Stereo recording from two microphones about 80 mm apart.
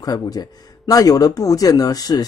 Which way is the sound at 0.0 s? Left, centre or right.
Left.